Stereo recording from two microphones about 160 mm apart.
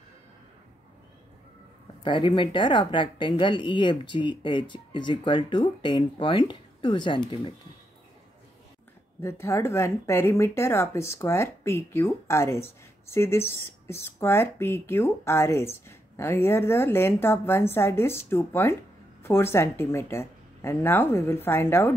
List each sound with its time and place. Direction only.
2.0 s a woman's voice: 30° left (ahead or behind)
9.2 s speech: 15° left (ahead or behind)